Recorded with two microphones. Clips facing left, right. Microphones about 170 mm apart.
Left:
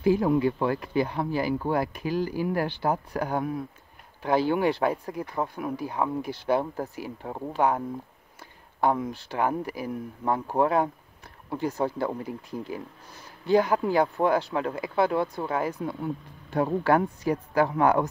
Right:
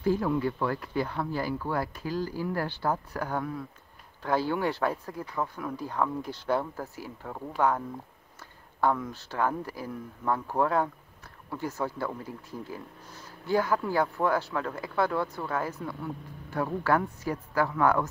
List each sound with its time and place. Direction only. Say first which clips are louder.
0.0 s speech: left 4 dB; 15° left (ahead or behind)
9.1 s speech: left 3 dB; 15° left (ahead or behind)